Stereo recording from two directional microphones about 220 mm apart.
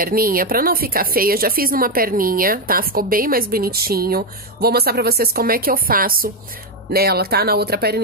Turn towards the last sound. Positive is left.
turn(degrees=-45)  # may be behind; listen again after turning